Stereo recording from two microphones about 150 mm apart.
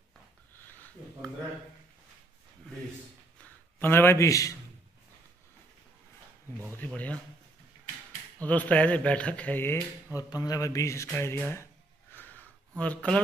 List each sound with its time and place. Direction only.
0.7 s a sound: 10° left (ahead or behind)
3.8 s speech: 15° left (ahead or behind)
6.8 s a man's voice: 10° left (ahead or behind)
8.4 s a man's voice: 10° left (ahead or behind)
10.1 s a man's voice: 25° left (ahead or behind)
12.1 s a sound: 10° left (ahead or behind)